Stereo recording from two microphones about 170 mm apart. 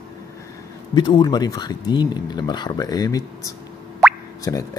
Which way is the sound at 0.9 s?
25° left (ahead or behind).